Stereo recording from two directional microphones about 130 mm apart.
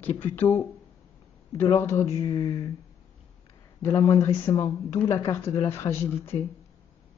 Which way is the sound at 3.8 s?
25° left (ahead or behind).